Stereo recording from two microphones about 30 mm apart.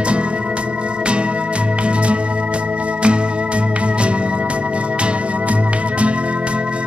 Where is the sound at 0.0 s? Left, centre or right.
Right.